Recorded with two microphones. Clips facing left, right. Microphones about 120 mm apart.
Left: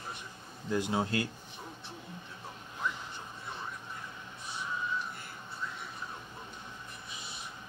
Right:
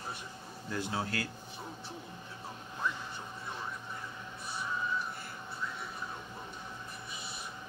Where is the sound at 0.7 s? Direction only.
20° left (ahead or behind).